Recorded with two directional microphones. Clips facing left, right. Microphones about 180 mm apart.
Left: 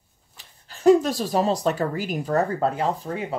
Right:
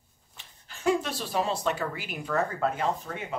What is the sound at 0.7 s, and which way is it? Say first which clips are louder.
Speech: left 10 dB; 40° left (ahead or behind).